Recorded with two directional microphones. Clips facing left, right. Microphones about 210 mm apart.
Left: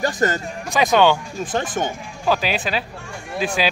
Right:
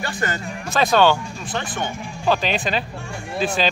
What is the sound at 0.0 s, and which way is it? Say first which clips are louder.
Speech: left 6 dB; 40° left (ahead or behind).